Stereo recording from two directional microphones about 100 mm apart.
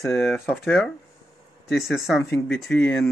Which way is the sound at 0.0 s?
5° left (ahead or behind).